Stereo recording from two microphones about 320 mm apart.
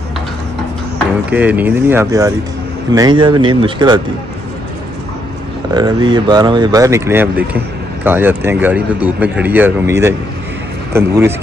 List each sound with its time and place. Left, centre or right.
1.3 s speech: centre
5.8 s speech: centre